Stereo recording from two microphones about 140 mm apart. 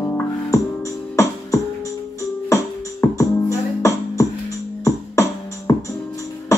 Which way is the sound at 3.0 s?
20° left (ahead or behind).